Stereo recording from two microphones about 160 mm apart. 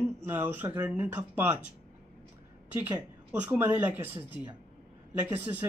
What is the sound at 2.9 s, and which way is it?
Speech, 15° right (ahead or behind).